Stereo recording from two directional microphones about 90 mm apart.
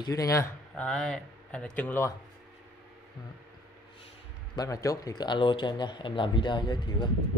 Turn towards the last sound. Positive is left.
turn(degrees=60)  # may be behind; listen again after turning